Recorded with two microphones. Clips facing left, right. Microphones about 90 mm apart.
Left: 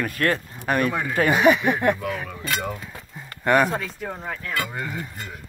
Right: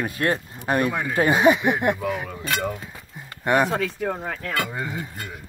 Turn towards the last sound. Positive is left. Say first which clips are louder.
# right 1 dB
turn(degrees=-15)  # may be behind; listen again after turning